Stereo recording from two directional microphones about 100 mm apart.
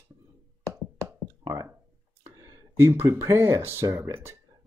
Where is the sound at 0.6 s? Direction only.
30° right (ahead or behind).